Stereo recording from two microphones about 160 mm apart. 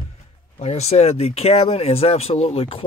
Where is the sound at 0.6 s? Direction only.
40° left (ahead or behind).